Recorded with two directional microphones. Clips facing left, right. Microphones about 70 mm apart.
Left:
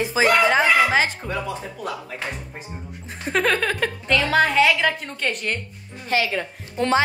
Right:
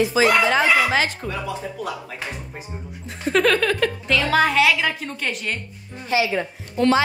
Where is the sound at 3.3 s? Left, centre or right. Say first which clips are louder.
Right 3 dB; left.